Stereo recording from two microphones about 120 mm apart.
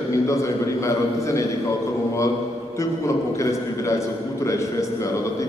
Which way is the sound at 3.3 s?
25° left (ahead or behind).